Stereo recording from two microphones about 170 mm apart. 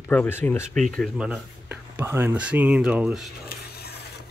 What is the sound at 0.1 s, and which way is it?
Speech, 10° left (ahead or behind).